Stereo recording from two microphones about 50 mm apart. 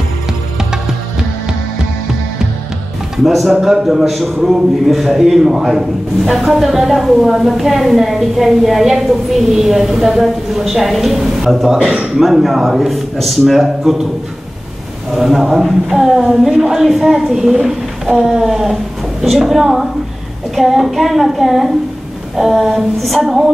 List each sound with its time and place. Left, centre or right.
3.3 s a man's voice: centre
11.8 s a man's voice: right
12.2 s a man's voice: centre
15.1 s a man's voice: centre